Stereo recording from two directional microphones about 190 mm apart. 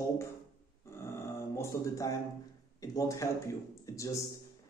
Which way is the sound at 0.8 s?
15° left (ahead or behind).